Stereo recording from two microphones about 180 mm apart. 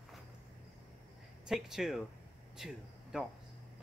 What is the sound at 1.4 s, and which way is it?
Speech, 5° right (ahead or behind).